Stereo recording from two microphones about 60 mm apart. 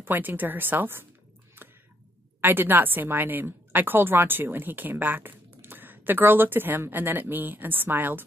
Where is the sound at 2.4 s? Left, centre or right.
Right.